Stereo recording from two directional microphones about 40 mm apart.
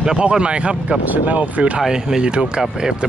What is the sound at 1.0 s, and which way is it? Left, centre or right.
Speech, right.